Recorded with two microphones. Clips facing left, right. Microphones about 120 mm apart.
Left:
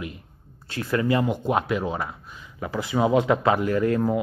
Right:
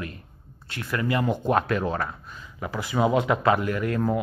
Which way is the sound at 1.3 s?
10° left (ahead or behind).